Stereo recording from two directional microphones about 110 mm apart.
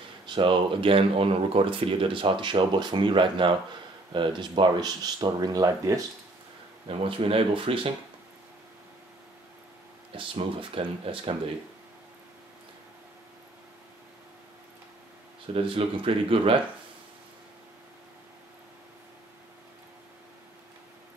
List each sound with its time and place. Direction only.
0.3 s speech: 50° right (ahead or behind); by 6.0 s 35° right (ahead or behind)
7.1 s speech: 55° right (ahead or behind)
10.1 s speech: 55° right (ahead or behind)
15.4 s speech: 55° right (ahead or behind)